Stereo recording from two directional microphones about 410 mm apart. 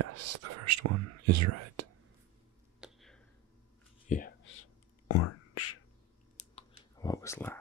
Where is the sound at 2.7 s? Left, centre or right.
Centre.